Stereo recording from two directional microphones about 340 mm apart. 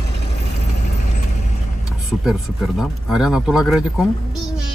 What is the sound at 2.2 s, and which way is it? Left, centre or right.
Speech, centre.